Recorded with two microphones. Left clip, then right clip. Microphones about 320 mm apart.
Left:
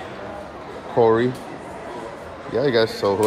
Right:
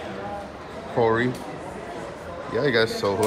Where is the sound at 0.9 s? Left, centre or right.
Centre.